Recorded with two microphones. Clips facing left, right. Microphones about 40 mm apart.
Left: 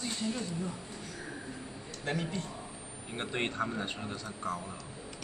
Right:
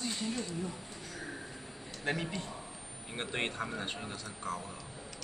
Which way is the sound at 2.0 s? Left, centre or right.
Centre.